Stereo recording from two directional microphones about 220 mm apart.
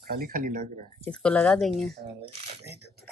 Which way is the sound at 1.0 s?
5° left (ahead or behind).